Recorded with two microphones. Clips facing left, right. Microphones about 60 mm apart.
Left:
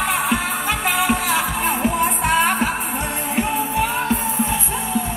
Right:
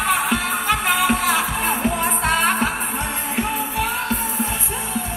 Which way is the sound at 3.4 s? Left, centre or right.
Left.